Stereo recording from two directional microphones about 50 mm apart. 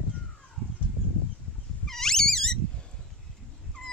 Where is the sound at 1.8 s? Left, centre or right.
Centre.